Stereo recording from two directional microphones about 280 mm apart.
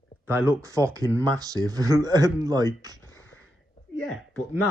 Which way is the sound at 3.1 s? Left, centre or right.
Left.